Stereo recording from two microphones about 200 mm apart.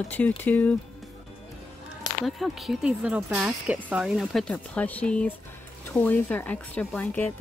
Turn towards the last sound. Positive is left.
turn(degrees=10)  # may be behind; listen again after turning